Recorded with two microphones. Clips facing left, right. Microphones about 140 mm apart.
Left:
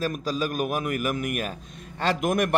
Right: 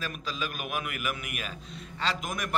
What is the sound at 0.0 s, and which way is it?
A man's voice, 40° left (ahead or behind).